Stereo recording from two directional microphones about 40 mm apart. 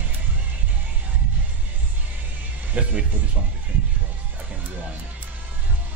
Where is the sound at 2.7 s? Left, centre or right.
Right.